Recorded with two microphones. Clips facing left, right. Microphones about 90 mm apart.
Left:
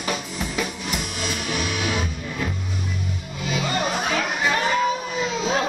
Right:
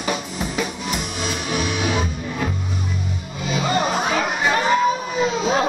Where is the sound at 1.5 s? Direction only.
20° right (ahead or behind).